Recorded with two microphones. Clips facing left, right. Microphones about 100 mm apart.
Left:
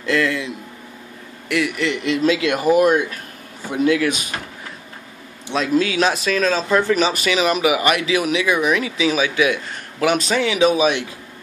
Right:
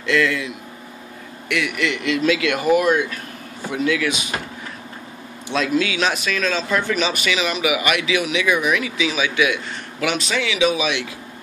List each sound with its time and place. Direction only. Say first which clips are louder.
0.0 s speech: even; 30° left (ahead or behind)
1.5 s speech: left 2 dB; 30° left (ahead or behind)
5.8 s speech: left 3 dB; 35° left (ahead or behind)